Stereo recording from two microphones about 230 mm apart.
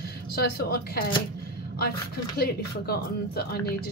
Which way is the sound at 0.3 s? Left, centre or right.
Left.